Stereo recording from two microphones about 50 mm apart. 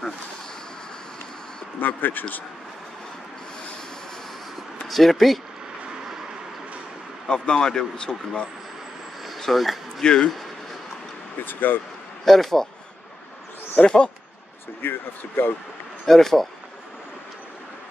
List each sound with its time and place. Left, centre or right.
1.8 s speech: left
4.8 s speech: centre
7.2 s speech: centre
9.2 s a sound: centre
10.0 s speech: centre
11.4 s speech: left
12.3 s speech: centre
13.8 s speech: centre
14.8 s speech: left
16.1 s speech: centre